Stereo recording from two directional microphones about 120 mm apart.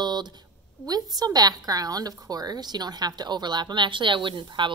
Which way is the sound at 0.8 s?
35° right (ahead or behind).